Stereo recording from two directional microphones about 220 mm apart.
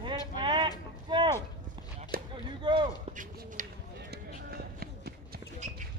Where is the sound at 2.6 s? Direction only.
20° right (ahead or behind).